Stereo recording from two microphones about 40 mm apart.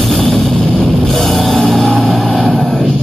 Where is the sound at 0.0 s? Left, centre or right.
Centre.